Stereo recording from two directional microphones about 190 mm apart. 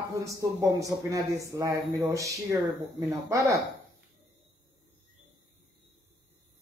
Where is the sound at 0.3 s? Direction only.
15° right (ahead or behind).